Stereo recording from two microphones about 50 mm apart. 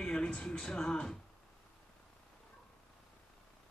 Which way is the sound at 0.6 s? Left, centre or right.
Centre.